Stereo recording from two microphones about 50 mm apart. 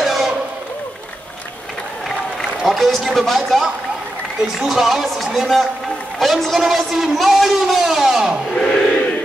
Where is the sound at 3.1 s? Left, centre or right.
Centre.